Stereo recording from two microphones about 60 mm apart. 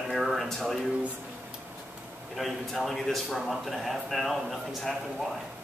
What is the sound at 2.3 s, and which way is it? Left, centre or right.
A man's voice, centre.